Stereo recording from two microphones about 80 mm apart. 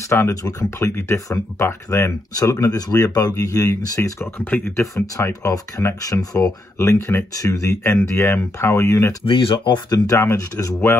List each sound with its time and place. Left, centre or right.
0.1 s speech: left
4.5 s speech: left
4.9 s speech: left
7.3 s speech: left
9.3 s speech: left
9.8 s speech: left